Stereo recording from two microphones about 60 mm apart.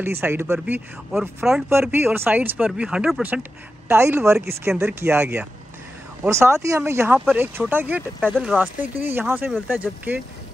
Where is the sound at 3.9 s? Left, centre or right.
Right.